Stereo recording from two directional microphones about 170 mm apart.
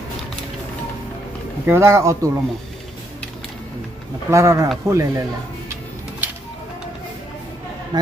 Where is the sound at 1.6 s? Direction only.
15° right (ahead or behind).